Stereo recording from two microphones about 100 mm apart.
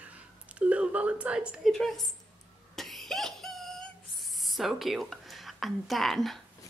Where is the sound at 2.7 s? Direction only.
Centre (ahead or behind).